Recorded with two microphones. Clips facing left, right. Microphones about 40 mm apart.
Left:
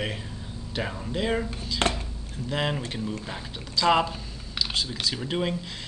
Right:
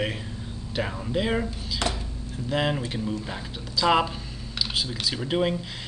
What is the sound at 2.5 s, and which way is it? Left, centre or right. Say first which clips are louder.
Speech: right 2 dB; centre.